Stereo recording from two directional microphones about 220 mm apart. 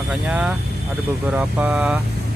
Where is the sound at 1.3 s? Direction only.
5° right (ahead or behind).